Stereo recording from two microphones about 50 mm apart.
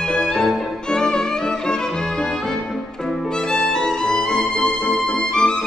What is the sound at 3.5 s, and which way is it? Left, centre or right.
Music, centre.